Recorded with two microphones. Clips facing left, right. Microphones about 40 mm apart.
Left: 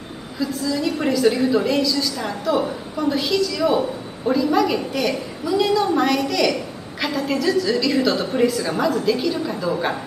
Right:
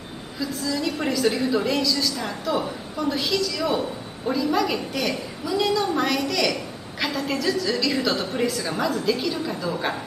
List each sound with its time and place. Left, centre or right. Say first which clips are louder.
0.4 s a woman's voice: left 4 dB; centre